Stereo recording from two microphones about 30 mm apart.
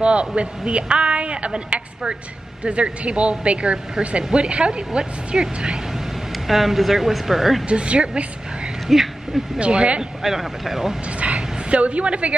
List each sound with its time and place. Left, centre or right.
0.0 s a woman's voice: right
6.3 s speech: centre
7.6 s speech: right
8.8 s a sound: centre
9.6 s speech: right
10.2 s speech: centre
11.1 s a sound: right
11.7 s a woman's voice: right